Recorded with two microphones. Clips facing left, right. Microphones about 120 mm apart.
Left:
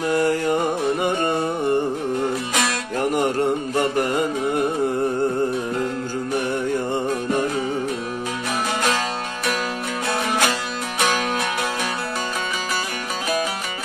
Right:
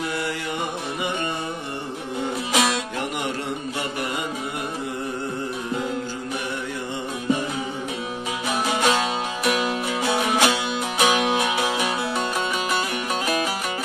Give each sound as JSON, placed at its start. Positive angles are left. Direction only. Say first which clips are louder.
{"t": 0.1, "sound": "music", "louder": "left 9 dB", "side_deg": 45}
{"t": 3.0, "sound": "music", "louder": "left 7 dB", "side_deg": 45}
{"t": 10.0, "sound": "music", "louder": "right 1 dB", "side_deg": 0}